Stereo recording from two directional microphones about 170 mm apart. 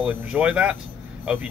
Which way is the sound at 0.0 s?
5° right (ahead or behind).